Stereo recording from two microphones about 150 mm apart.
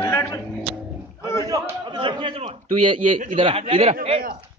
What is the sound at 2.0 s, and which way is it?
Speech, 35° right (ahead or behind).